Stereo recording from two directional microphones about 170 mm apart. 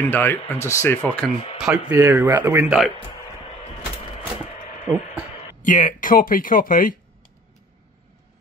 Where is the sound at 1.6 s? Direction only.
10° right (ahead or behind).